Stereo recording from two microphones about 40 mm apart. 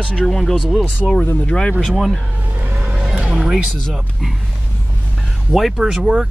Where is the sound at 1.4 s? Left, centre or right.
Left.